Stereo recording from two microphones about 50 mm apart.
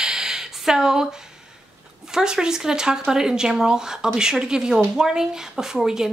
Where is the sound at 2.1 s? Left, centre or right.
Centre.